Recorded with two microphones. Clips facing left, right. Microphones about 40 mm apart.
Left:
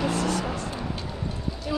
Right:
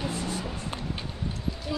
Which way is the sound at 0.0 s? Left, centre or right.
Left.